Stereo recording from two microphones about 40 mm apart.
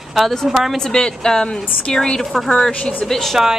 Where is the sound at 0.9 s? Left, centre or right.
Centre.